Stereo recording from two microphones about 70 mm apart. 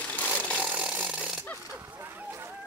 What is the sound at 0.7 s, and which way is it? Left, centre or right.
Ratchet, centre.